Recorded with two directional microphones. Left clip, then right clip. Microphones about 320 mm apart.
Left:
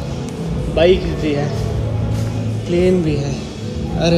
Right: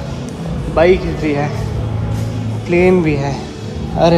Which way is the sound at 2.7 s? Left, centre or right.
Right.